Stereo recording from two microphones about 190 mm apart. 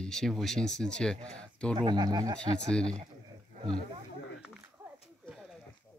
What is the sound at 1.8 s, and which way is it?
Speech, 20° right (ahead or behind).